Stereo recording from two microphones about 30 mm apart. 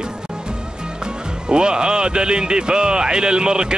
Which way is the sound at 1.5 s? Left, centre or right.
Right.